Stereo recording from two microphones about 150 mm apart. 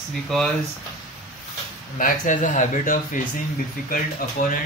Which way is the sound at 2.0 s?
65° left (ahead or behind).